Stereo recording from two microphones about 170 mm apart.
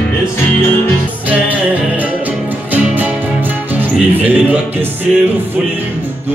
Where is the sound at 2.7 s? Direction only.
10° right (ahead or behind).